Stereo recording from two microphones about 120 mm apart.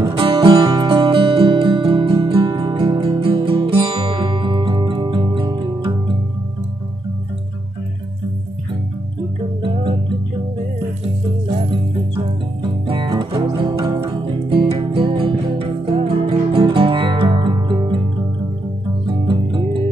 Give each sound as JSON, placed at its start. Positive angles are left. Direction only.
{"t": 0.1, "sound": "music", "side_deg": -50}
{"t": 0.6, "sound": "music", "side_deg": -30}
{"t": 0.8, "sound": "music", "side_deg": -45}
{"t": 2.5, "sound": "music", "side_deg": -35}
{"t": 3.2, "sound": "guitar", "side_deg": -50}
{"t": 12.6, "sound": "music", "side_deg": -45}
{"t": 14.0, "sound": "music", "side_deg": -45}
{"t": 19.0, "sound": "music", "side_deg": -45}